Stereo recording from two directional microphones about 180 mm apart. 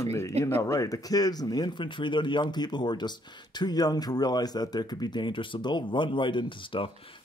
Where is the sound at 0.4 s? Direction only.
15° left (ahead or behind).